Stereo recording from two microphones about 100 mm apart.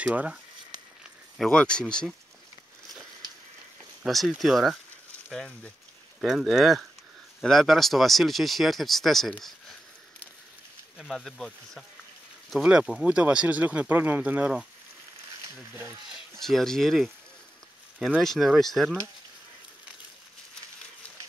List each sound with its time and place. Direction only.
0.0 s speech: 15° right (ahead or behind)
1.4 s speech: 10° left (ahead or behind)
4.0 s speech: centre (ahead or behind)
11.0 s speech: centre (ahead or behind); by 15.9 s 25° right (ahead or behind)
16.1 s speech: 5° left (ahead or behind)
18.2 s speech: centre (ahead or behind)